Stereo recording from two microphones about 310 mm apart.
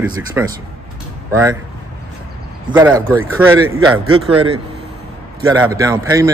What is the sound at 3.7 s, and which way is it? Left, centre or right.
Speech, right.